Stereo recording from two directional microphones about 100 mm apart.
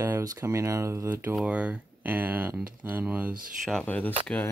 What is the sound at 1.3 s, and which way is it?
Speech, 10° right (ahead or behind).